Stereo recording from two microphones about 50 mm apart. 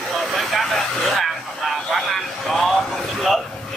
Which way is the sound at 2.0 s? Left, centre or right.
Centre.